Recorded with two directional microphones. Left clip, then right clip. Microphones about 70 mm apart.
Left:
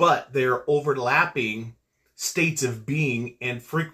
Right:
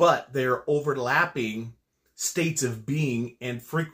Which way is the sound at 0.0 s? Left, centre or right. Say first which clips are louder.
Left 1 dB; right.